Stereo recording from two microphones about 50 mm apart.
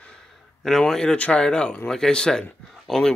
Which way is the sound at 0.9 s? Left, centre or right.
Centre.